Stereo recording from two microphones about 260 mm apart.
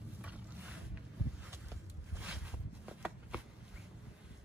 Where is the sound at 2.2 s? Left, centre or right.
Centre.